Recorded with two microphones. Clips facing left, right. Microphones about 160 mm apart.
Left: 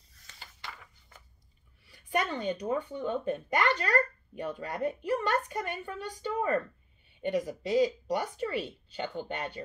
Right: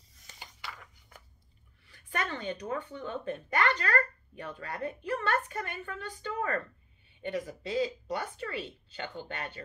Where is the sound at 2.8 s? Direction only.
15° left (ahead or behind).